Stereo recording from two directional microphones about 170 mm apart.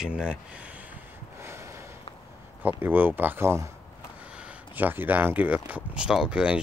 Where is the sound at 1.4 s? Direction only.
15° right (ahead or behind).